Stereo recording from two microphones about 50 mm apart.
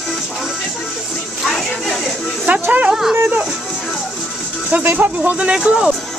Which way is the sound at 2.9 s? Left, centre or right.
Centre.